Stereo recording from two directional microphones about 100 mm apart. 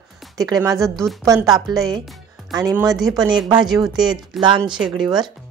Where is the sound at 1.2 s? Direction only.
35° right (ahead or behind).